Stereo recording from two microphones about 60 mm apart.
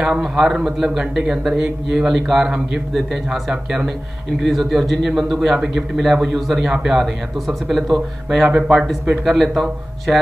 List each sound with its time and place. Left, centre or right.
0.0 s speech: centre
4.4 s speech: centre
5.5 s speech: centre
8.5 s speech: right
9.2 s speech: centre